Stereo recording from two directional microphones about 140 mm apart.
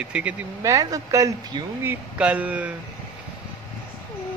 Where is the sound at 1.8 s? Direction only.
10° right (ahead or behind).